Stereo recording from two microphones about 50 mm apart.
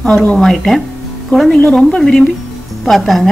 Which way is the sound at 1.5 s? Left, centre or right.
Centre.